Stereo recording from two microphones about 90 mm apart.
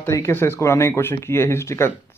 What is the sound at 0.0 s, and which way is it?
Speech, 30° left (ahead or behind).